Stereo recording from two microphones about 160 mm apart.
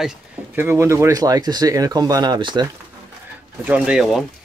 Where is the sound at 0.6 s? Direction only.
15° right (ahead or behind).